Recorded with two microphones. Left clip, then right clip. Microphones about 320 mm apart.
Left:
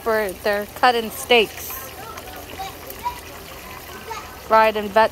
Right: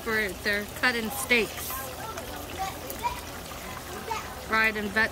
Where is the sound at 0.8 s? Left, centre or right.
Centre.